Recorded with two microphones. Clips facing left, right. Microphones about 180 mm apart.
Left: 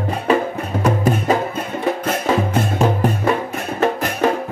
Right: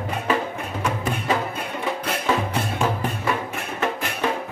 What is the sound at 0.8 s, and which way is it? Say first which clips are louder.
Music: left 9 dB; 40° left (ahead or behind).